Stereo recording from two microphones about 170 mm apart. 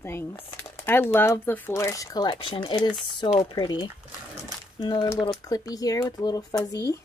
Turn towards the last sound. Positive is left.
turn(degrees=20)  # may be behind; listen again after turning